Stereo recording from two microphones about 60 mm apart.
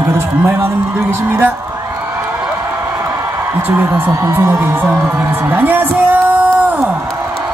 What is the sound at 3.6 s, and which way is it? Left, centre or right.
Speech, right.